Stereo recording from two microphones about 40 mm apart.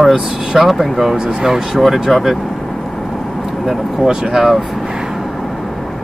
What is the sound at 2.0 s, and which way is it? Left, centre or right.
Speech, centre.